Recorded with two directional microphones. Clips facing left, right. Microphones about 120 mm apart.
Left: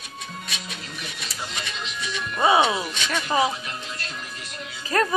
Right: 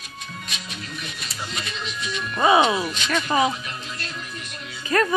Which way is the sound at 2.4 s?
20° left (ahead or behind).